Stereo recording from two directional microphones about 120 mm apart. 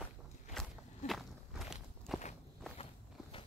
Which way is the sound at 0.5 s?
Centre (ahead or behind).